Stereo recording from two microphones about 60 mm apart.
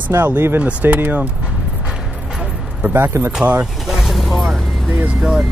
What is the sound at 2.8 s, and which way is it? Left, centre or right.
Speech, right.